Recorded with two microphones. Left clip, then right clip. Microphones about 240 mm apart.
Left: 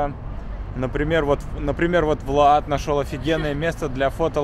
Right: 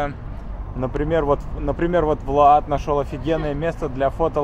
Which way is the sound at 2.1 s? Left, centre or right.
Left.